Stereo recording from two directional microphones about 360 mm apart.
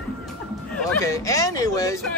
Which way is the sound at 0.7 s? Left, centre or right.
Centre.